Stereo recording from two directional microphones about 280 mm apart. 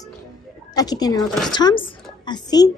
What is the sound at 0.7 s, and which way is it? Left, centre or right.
A woman's voice, centre.